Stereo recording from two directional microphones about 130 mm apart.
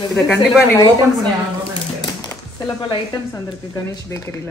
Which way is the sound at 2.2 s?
35° left (ahead or behind).